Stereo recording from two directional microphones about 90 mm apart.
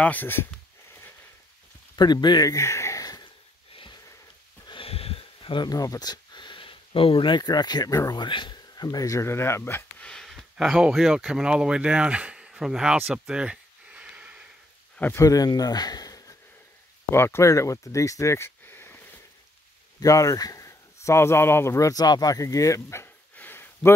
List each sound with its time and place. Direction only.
0.0 s speech: 20° left (ahead or behind)
2.0 s speech: 50° left (ahead or behind)
2.5 s a sound: 35° left (ahead or behind)
4.6 s a sound: 80° left
5.7 s speech: 45° left (ahead or behind)
8.2 s speech: 60° left (ahead or behind); by 9.8 s 25° left (ahead or behind)
9.9 s speech: 5° left (ahead or behind)
13.0 s a sound: 10° right (ahead or behind)
15.1 s speech: 40° left (ahead or behind)
17.1 s speech: 30° left (ahead or behind)
20.0 s speech: 40° left (ahead or behind)
23.3 s a sound: 20° left (ahead or behind)